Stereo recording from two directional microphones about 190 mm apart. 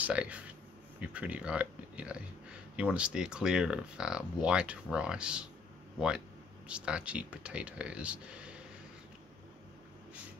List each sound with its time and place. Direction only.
0.0 s speech: 5° right (ahead or behind)